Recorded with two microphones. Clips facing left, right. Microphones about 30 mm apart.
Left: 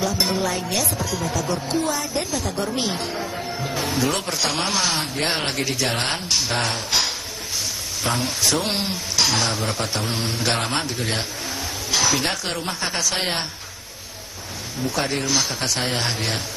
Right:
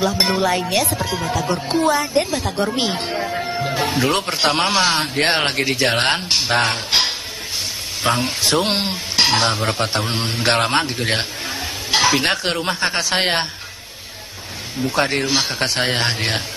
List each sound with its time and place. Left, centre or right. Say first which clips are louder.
0.0 s a woman's voice: right 4 dB; right
6.5 s speech: right 5 dB; right
8.0 s speech: right 4 dB; right
9.1 s a woman's voice: right 5 dB; right
14.9 s a woman's voice: right 5 dB; right